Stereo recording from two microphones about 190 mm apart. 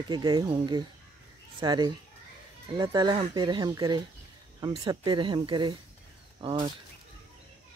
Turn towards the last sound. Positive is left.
turn(degrees=-25)  # may be behind; listen again after turning